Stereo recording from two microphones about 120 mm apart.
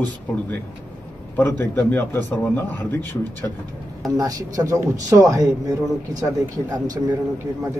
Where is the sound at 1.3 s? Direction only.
20° left (ahead or behind).